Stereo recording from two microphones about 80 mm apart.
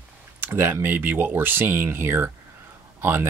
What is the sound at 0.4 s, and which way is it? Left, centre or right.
Speech, right.